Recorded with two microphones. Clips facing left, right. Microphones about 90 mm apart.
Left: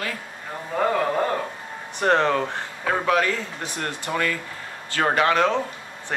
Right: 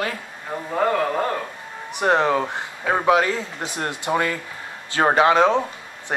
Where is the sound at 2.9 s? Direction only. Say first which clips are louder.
Right 3 dB; 20° right (ahead or behind).